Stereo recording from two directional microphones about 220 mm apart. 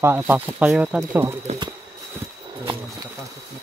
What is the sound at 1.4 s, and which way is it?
Speech, 30° right (ahead or behind).